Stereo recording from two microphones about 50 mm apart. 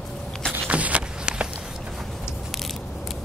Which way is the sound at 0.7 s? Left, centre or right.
Right.